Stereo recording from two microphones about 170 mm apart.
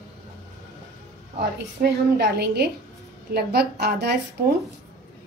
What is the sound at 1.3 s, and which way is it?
A woman's voice, 70° right (ahead or behind).